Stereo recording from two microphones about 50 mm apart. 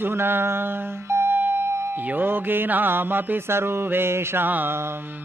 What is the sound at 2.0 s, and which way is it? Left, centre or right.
Mantra, right.